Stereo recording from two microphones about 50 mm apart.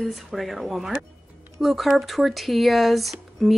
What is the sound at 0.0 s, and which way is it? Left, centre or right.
Speech, centre.